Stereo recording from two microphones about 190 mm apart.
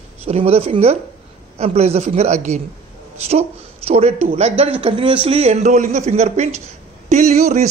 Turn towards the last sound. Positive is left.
turn(degrees=-35)  # may be behind; listen again after turning